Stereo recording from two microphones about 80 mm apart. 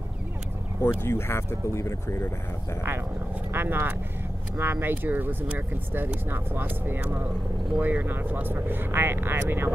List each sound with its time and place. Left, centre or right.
0.7 s speech: left
3.5 s speech: right